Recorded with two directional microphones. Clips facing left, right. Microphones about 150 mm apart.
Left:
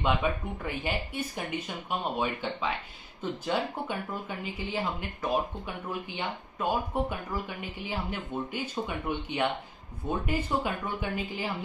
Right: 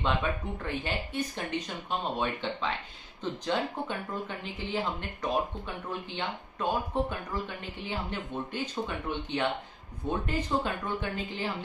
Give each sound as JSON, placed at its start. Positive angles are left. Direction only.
{"t": 0.0, "sound": "speech", "side_deg": 10}